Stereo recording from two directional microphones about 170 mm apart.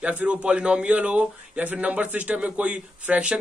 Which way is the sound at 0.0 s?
10° right (ahead or behind).